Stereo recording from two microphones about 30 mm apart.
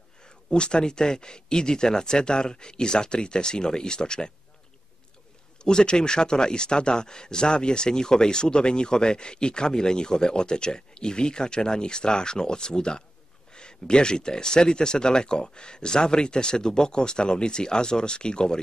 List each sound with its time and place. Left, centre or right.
0.2 s speech: left
5.6 s speech: left